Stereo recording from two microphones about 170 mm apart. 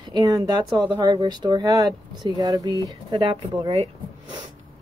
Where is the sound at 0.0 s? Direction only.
20° right (ahead or behind).